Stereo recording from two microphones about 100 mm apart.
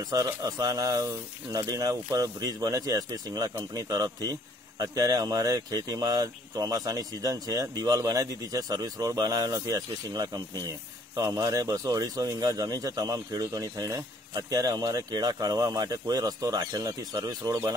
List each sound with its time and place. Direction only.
0.1 s a man's voice: 40° right (ahead or behind)